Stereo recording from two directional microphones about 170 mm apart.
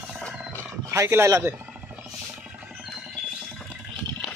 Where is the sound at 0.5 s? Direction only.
15° right (ahead or behind).